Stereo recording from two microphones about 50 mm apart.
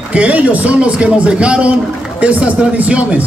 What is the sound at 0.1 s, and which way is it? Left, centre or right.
A man's voice, right.